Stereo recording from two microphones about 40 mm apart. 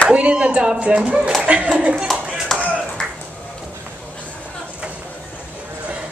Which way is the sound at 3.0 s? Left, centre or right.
Centre.